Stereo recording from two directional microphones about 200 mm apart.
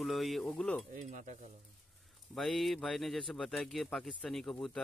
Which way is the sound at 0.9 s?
40° right (ahead or behind).